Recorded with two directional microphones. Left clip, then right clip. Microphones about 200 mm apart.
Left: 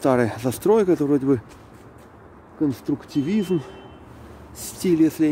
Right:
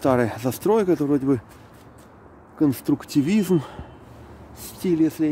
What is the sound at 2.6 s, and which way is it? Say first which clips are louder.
Speech: right 3 dB; 30° right (ahead or behind).